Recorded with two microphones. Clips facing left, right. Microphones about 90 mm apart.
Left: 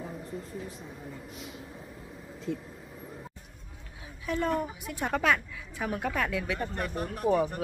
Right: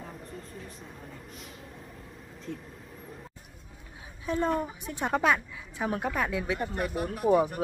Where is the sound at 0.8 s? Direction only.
Centre (ahead or behind).